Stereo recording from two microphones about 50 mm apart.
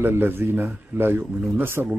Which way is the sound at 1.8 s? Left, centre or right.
Right.